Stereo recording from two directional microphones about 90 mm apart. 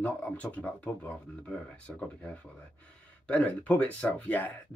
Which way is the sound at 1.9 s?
10° left (ahead or behind).